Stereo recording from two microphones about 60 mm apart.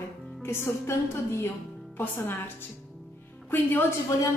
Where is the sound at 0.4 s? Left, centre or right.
Left.